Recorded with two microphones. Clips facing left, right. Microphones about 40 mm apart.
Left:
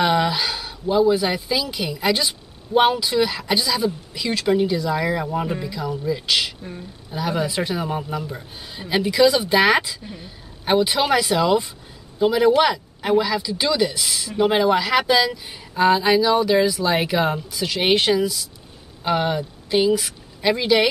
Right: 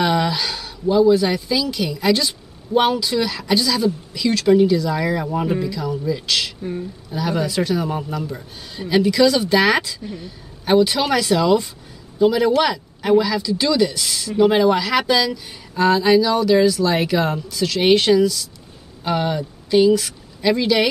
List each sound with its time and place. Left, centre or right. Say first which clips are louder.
0.0 s speech: even; centre
5.7 s a woman's voice: right 2 dB; centre